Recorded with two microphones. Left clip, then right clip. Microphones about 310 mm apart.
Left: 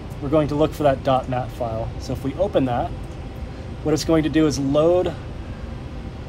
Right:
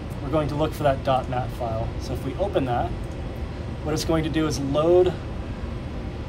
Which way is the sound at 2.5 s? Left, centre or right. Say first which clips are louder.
Left 2 dB; left.